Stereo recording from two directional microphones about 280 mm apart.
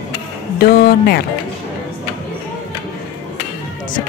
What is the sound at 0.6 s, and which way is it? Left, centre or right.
Speech, left.